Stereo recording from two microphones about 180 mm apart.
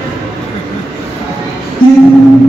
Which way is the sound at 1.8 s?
50° left (ahead or behind).